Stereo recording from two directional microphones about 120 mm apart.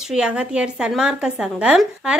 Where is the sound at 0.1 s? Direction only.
10° right (ahead or behind).